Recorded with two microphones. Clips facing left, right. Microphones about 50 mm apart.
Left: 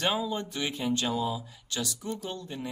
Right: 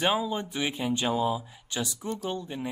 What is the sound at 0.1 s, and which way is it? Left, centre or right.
Speech, centre.